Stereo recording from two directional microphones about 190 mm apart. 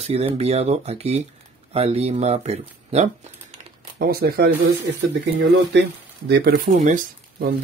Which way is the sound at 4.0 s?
50° right (ahead or behind).